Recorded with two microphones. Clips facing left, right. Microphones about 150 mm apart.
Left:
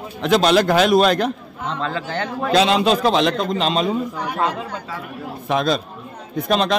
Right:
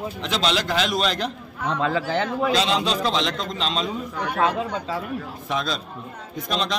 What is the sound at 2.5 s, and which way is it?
A man's voice, 60° left (ahead or behind).